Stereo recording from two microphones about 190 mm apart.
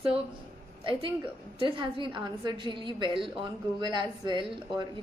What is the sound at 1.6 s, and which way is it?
A woman's voice, 25° right (ahead or behind).